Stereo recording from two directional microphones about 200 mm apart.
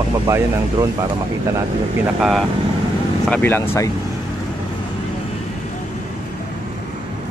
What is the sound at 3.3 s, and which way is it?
Speech, 10° left (ahead or behind).